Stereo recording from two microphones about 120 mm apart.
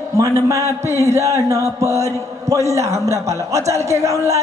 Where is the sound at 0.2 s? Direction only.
25° right (ahead or behind).